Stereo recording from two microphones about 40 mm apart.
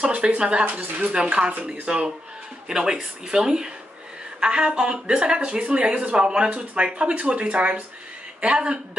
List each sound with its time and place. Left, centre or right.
0.0 s a sound: right
0.4 s speech: right
0.7 s speech: right
1.1 s speech: right
2.7 s speech: centre